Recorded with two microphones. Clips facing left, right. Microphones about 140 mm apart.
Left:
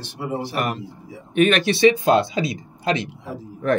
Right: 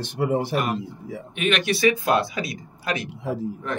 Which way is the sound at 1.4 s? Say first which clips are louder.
Left 7 dB; 40° left (ahead or behind).